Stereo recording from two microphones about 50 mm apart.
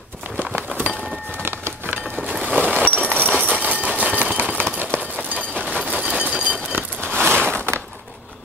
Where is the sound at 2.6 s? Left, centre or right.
Right.